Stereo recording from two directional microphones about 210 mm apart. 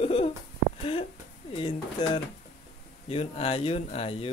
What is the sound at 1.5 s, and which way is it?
Speech, 25° left (ahead or behind).